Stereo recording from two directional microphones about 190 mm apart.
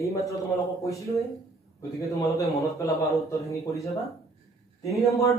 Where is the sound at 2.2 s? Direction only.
15° left (ahead or behind).